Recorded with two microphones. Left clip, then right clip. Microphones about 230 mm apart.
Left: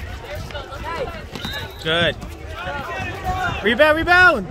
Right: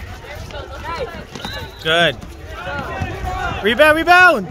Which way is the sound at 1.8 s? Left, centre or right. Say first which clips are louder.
Right 4 dB; right.